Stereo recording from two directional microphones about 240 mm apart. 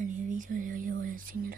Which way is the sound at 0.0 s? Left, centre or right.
Right.